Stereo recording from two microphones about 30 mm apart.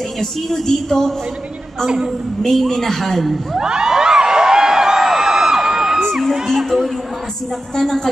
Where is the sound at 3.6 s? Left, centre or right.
Right.